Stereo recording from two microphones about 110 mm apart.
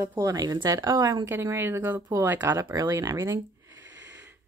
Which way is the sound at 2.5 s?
35° right (ahead or behind).